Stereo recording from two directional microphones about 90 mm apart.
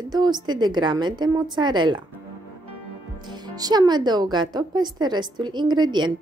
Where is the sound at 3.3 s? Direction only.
45° right (ahead or behind).